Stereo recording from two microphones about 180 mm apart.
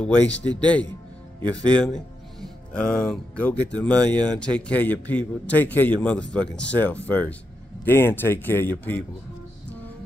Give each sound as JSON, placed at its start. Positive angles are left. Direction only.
{"t": 0.0, "sound": "a man's voice", "side_deg": 5}
{"t": 1.5, "sound": "a man's voice", "side_deg": 5}